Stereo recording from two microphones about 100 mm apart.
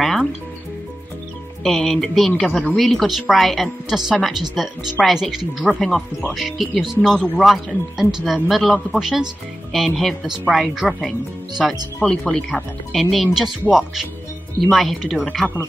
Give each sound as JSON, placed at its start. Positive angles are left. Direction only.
{"t": 1.6, "sound": "speech", "side_deg": 0}